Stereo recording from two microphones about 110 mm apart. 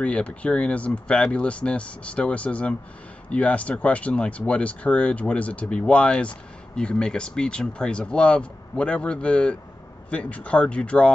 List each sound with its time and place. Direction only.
0.0 s speech: 10° left (ahead or behind)